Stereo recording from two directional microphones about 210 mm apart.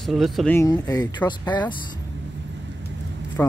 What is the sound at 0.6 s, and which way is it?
Speech, 15° left (ahead or behind).